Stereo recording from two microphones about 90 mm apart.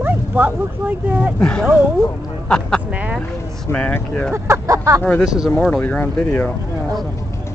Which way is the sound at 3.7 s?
15° left (ahead or behind).